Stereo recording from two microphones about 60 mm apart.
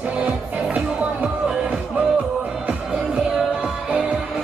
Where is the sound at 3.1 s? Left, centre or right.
Centre.